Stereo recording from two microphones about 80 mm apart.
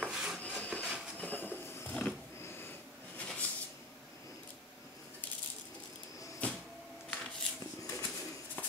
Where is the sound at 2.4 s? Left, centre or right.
Left.